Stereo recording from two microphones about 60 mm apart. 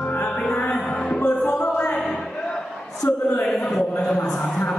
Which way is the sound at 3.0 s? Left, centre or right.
Left.